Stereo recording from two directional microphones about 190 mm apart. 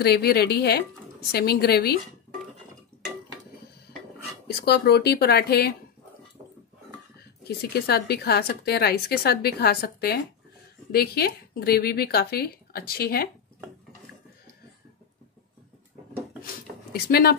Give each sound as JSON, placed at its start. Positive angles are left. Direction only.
{"t": 0.0, "sound": "speech", "side_deg": 55}
{"t": 4.5, "sound": "speech", "side_deg": 60}
{"t": 7.4, "sound": "speech", "side_deg": 55}
{"t": 16.9, "sound": "speech", "side_deg": 55}